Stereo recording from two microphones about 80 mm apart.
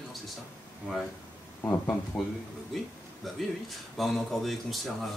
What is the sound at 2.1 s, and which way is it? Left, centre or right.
Speech, centre.